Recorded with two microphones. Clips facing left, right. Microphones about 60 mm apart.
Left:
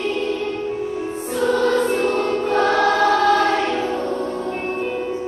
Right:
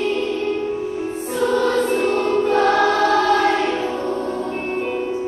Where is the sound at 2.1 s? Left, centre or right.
Centre.